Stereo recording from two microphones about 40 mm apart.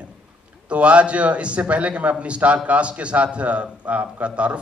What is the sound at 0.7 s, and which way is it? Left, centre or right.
A man's voice, right.